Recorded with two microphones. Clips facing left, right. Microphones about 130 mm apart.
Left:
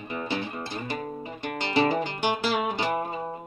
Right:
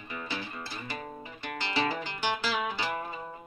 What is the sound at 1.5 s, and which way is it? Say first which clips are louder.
Music: left 7 dB; 50° left (ahead or behind).